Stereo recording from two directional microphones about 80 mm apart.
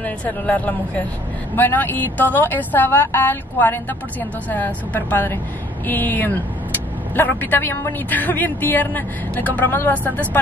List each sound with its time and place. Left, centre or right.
0.0 s a woman's voice: centre